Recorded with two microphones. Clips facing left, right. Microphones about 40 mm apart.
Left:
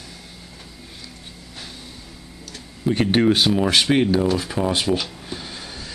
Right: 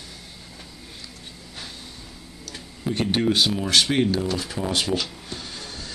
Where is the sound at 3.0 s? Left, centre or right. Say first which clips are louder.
Left 4 dB; left.